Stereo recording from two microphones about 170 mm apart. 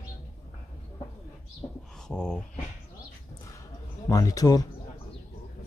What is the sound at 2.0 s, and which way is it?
Speech, 5° left (ahead or behind).